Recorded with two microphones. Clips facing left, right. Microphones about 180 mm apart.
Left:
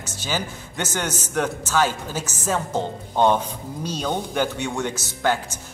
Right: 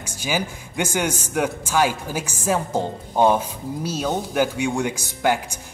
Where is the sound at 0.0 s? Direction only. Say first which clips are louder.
Right 2 dB; 10° right (ahead or behind).